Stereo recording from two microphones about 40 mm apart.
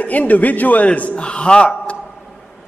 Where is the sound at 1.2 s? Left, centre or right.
Left.